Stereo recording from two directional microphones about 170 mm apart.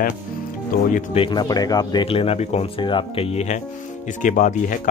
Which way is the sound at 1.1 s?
30° left (ahead or behind).